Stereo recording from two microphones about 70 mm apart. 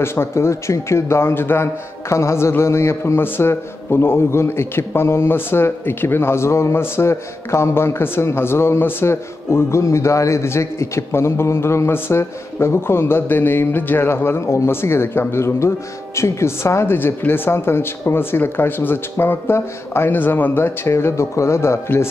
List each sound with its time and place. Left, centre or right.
0.0 s a man's voice: left